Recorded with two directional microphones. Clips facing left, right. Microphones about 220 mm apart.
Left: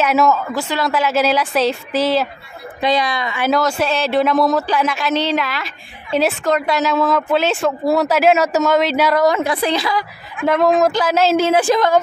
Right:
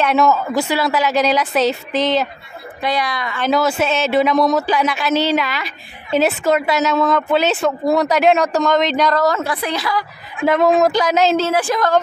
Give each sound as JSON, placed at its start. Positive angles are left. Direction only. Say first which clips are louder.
{"t": 0.0, "sound": "speech", "louder": "even", "side_deg": 5}
{"t": 0.6, "sound": "speech", "louder": "right 2 dB", "side_deg": -10}
{"t": 2.8, "sound": "a woman's voice", "louder": "left 3 dB", "side_deg": 20}
{"t": 3.3, "sound": "speech", "louder": "right 1 dB", "side_deg": 5}
{"t": 9.6, "sound": "a woman's voice", "louder": "left 3 dB", "side_deg": 25}
{"t": 10.4, "sound": "speech", "louder": "right 1 dB", "side_deg": 0}
{"t": 11.4, "sound": "a woman's voice", "louder": "left 3 dB", "side_deg": 20}